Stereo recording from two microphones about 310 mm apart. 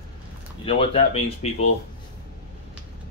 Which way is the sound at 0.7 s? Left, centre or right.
Centre.